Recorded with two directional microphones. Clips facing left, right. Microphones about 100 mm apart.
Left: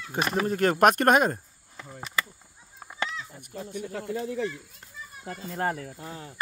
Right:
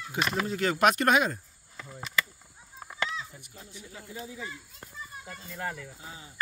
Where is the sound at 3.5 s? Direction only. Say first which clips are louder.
Left 13 dB; 60° left (ahead or behind); by 4.5 s 75° left (ahead or behind).